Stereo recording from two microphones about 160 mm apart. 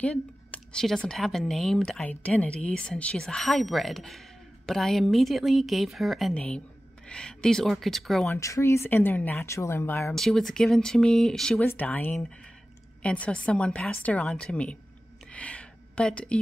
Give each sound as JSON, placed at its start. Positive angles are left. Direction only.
{"t": 0.0, "sound": "speech", "side_deg": 5}
{"t": 8.3, "sound": "speech", "side_deg": 20}
{"t": 10.1, "sound": "speech", "side_deg": 0}
{"t": 15.3, "sound": "a sound", "side_deg": 5}